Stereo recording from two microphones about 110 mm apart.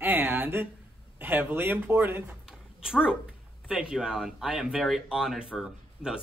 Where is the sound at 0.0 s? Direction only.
15° right (ahead or behind).